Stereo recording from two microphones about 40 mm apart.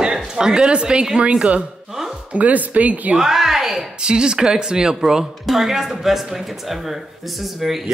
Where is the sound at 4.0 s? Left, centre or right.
Right.